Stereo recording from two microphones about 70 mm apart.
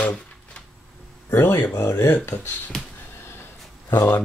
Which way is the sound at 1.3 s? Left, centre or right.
Left.